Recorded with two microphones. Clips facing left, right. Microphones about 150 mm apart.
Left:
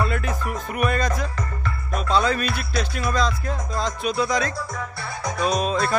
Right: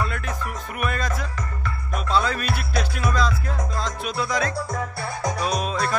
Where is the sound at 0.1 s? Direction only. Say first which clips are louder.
Left 4 dB; 5° left (ahead or behind).